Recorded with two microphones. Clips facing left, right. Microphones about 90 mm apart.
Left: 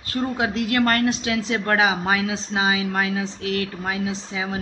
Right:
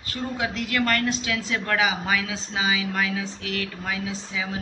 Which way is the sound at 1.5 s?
35° left (ahead or behind).